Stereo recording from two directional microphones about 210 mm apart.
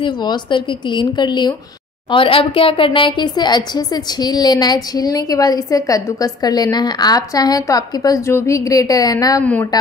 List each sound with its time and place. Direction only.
0.0 s a woman's voice: 20° left (ahead or behind)